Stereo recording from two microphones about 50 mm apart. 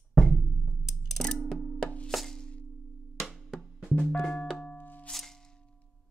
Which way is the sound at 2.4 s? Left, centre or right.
Left.